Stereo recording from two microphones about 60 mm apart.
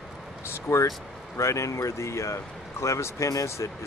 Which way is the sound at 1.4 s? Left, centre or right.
Left.